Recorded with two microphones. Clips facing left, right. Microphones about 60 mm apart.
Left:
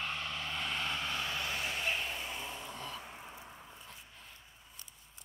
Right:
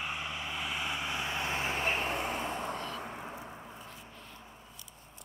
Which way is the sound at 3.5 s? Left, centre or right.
Right.